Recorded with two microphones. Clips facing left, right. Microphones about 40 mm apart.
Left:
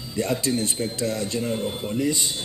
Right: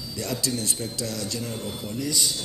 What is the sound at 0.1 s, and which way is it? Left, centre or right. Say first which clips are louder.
Speech: left 6 dB; left.